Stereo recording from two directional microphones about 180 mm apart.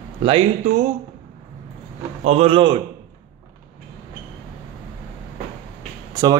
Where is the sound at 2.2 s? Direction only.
35° right (ahead or behind).